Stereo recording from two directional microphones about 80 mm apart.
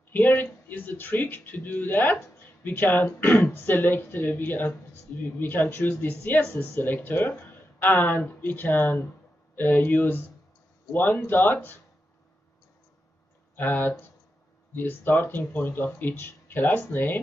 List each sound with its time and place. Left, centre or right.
0.1 s speech: left
13.6 s speech: left